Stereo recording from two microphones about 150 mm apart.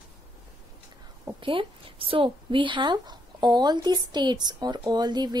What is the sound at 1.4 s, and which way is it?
A woman's voice, 35° right (ahead or behind).